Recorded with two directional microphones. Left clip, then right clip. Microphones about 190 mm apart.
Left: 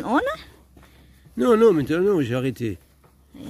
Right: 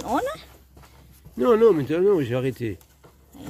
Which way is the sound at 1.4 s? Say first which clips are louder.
Left 1 dB; 30° left (ahead or behind).